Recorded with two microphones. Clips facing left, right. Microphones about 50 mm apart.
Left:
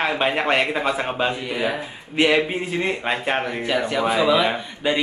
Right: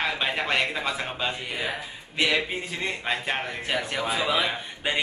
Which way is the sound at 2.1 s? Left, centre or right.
Left.